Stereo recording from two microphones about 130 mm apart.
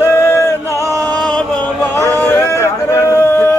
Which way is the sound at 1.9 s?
20° left (ahead or behind).